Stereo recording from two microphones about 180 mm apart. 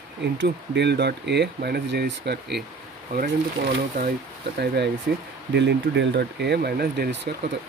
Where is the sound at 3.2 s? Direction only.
50° right (ahead or behind).